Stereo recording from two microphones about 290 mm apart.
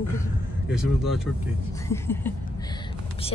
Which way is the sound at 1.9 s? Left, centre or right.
Centre.